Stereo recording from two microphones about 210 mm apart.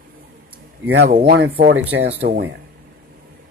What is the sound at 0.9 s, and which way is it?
Speech, 50° right (ahead or behind).